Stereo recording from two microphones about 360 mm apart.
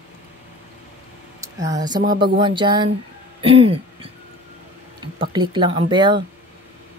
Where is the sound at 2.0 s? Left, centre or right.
Right.